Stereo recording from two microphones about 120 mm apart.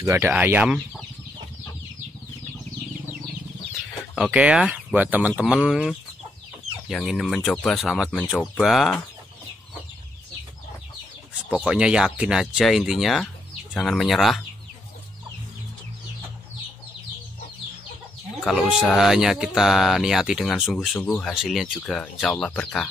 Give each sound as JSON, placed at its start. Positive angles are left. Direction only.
{"t": 0.0, "sound": "speech", "side_deg": -25}
{"t": 0.3, "sound": "speech", "side_deg": -15}
{"t": 4.1, "sound": "speech", "side_deg": -10}
{"t": 11.5, "sound": "speech", "side_deg": -5}
{"t": 18.4, "sound": "speech", "side_deg": -5}